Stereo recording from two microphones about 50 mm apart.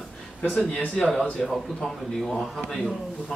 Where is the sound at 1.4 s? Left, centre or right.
Centre.